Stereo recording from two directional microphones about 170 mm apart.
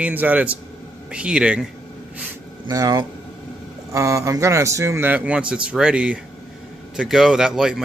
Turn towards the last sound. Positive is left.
turn(degrees=-5)  # may be behind; listen again after turning